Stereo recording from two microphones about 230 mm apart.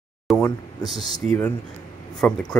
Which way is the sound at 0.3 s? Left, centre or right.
Centre.